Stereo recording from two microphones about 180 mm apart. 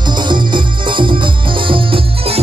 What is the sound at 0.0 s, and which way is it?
Music, 25° right (ahead or behind).